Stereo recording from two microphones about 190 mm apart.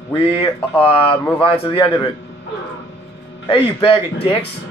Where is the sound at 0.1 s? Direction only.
30° left (ahead or behind).